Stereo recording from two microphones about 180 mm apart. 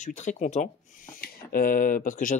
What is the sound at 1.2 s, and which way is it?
Speech, 55° left (ahead or behind).